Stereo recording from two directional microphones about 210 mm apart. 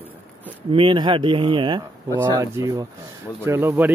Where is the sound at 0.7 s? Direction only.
25° right (ahead or behind).